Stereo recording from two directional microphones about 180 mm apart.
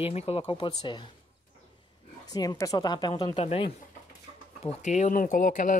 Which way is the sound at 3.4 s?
35° left (ahead or behind).